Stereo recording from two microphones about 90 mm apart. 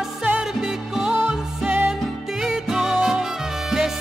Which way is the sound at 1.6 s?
25° right (ahead or behind).